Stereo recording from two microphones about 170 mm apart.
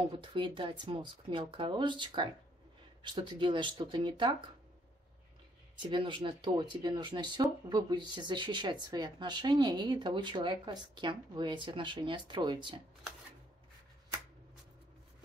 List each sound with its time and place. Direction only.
0.1 s speech: 30° right (ahead or behind)
5.8 s speech: 30° right (ahead or behind)